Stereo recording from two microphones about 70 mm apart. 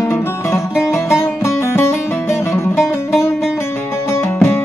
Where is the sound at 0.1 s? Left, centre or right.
Left.